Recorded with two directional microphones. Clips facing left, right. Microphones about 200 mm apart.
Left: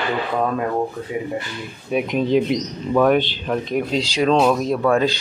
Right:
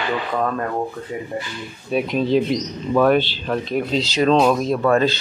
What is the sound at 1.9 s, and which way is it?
Speech, 15° left (ahead or behind).